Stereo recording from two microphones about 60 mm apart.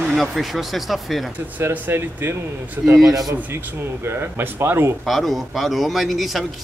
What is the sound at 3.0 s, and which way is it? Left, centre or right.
Speech, right.